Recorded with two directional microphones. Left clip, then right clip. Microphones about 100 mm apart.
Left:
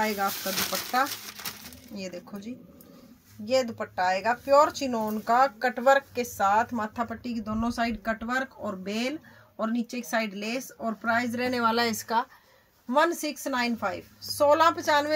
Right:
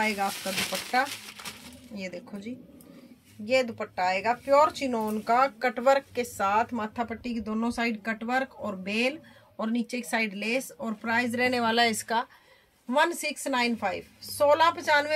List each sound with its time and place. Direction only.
0.2 s speech: 5° right (ahead or behind)
0.5 s speech: 10° left (ahead or behind)
2.0 s speech: 15° right (ahead or behind); by 12.3 s 40° right (ahead or behind)
12.9 s speech: 30° right (ahead or behind)